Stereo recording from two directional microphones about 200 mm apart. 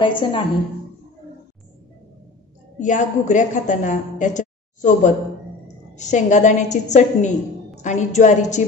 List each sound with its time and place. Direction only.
0.0 s a woman's voice: 25° left (ahead or behind)
2.8 s a woman's voice: 40° left (ahead or behind)